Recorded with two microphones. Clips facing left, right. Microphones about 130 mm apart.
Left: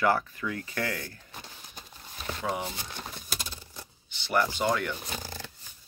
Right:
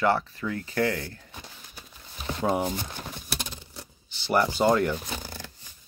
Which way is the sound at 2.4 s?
40° right (ahead or behind).